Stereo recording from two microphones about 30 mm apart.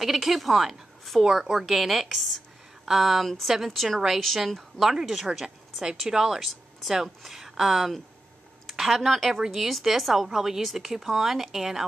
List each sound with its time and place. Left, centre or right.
0.0 s a woman's voice: centre
1.2 s a woman's voice: centre
3.7 s speech: centre
4.9 s a woman's voice: centre
5.8 s a woman's voice: centre
8.7 s a sound: centre
9.0 s a woman's voice: centre